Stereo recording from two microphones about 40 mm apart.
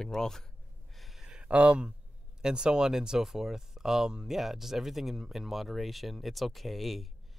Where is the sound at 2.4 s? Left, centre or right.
Centre.